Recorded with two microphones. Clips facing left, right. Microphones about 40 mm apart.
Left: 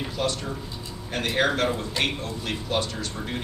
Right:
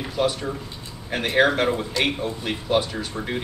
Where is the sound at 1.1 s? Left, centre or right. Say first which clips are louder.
Right 5 dB; centre.